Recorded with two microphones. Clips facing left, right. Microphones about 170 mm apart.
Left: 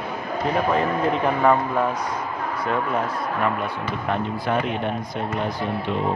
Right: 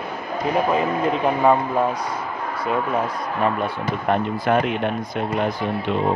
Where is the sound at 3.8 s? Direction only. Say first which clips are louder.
Right 5 dB; 45° right (ahead or behind).